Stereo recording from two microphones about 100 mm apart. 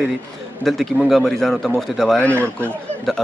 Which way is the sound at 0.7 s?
Centre (ahead or behind).